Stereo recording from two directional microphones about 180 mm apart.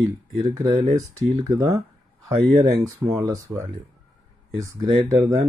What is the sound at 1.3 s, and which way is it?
Speech, 20° right (ahead or behind).